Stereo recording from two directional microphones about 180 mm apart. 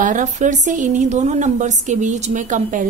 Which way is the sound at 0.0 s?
45° right (ahead or behind).